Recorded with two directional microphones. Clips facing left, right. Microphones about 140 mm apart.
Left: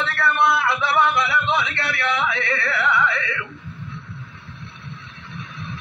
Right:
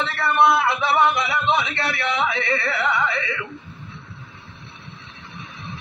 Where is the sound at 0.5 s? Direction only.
25° right (ahead or behind).